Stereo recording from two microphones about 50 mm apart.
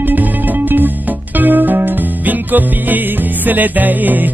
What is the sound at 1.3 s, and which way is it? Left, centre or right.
Music, right.